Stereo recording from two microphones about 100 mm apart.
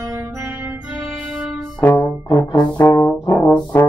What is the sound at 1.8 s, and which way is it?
Brass instrument, 15° left (ahead or behind).